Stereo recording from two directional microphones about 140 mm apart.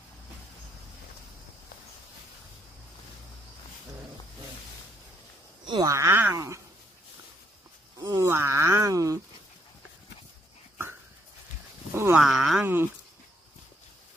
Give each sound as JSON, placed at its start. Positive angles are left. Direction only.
{"t": 5.7, "sound": "speech", "side_deg": -25}
{"t": 8.0, "sound": "a sound", "side_deg": -30}
{"t": 8.3, "sound": "speech", "side_deg": -20}
{"t": 11.9, "sound": "livestock", "side_deg": -20}
{"t": 12.2, "sound": "speech", "side_deg": -5}